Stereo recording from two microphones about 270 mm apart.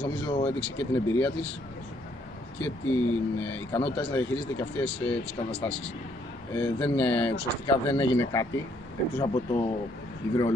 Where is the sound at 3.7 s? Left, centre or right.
Centre.